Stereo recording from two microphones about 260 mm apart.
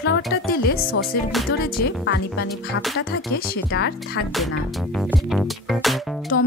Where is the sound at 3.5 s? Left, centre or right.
Left.